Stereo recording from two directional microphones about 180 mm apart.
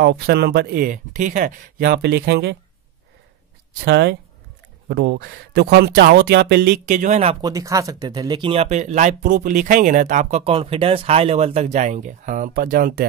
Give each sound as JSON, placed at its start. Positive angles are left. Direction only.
{"t": 0.0, "sound": "speech", "side_deg": -65}
{"t": 3.7, "sound": "speech", "side_deg": -70}
{"t": 6.9, "sound": "speech", "side_deg": -40}
{"t": 7.4, "sound": "speech", "side_deg": -20}